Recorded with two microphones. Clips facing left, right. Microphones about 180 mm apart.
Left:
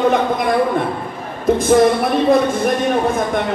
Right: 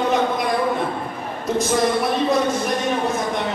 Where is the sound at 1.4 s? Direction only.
55° left (ahead or behind).